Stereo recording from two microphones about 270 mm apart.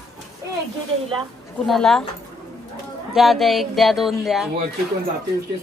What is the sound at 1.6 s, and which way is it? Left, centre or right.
Speech, centre.